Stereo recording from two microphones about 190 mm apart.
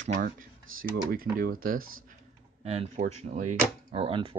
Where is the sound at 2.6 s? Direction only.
35° right (ahead or behind).